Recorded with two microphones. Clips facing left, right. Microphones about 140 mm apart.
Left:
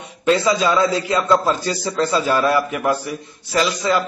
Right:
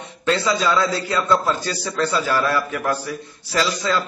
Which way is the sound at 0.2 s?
15° left (ahead or behind).